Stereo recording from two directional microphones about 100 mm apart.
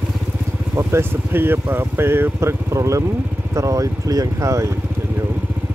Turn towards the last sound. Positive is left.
turn(degrees=-30)  # may be behind; listen again after turning